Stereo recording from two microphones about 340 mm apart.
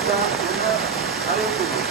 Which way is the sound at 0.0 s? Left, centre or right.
Centre.